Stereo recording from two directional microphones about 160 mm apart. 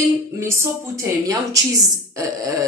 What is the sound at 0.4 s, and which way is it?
Speech, 15° right (ahead or behind).